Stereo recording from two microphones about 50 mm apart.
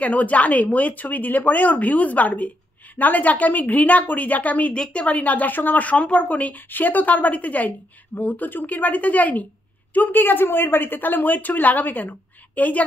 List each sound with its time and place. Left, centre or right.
0.0 s a woman's voice: left